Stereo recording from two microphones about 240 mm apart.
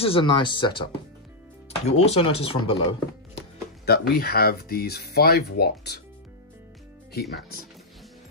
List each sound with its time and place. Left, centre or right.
0.0 s speech: left
1.9 s speech: left
3.8 s speech: left